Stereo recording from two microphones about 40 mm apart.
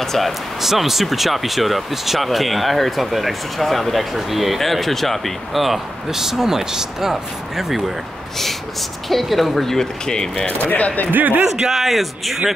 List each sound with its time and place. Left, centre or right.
0.0 s speech: centre
0.6 s speech: centre
9.1 s speech: centre
10.4 s speech: left
11.1 s a man's voice: right
11.5 s speech: centre